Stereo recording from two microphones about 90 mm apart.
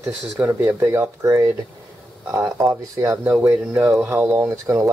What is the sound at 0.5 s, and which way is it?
Speech, 25° right (ahead or behind).